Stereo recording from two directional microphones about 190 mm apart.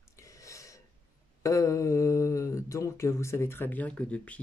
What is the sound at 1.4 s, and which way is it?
Speech, 15° left (ahead or behind).